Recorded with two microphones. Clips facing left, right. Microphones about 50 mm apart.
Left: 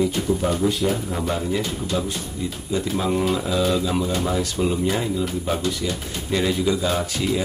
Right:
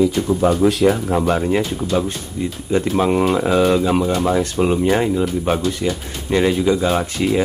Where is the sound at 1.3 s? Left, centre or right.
Right.